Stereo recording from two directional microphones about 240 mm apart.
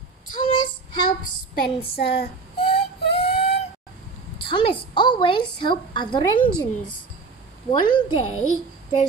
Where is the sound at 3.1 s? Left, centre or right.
Left.